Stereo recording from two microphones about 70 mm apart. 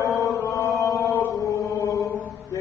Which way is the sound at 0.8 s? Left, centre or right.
Left.